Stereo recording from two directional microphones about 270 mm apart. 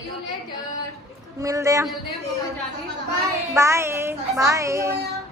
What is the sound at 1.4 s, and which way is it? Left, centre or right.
Speech, centre.